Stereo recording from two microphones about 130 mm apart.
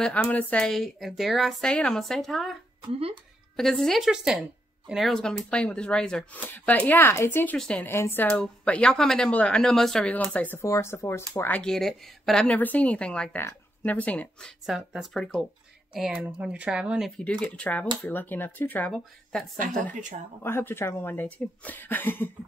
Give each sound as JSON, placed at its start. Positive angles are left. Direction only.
{"t": 0.0, "sound": "a woman's voice", "side_deg": 10}
{"t": 3.5, "sound": "a woman's voice", "side_deg": 5}
{"t": 7.5, "sound": "speech", "side_deg": 5}
{"t": 7.9, "sound": "speech", "side_deg": 15}
{"t": 14.7, "sound": "a woman's voice", "side_deg": 0}
{"t": 17.2, "sound": "speech", "side_deg": 10}
{"t": 20.4, "sound": "speech", "side_deg": 15}